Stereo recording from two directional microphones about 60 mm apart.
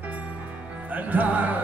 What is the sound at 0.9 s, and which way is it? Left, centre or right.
Music, right.